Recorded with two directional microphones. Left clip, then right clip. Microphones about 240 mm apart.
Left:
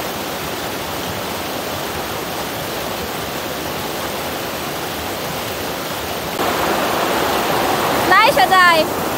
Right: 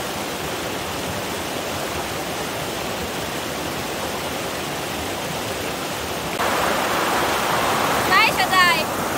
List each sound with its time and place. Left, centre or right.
8.1 s vehicle: centre